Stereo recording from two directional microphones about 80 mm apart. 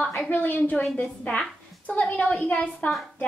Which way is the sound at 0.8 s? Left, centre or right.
Centre.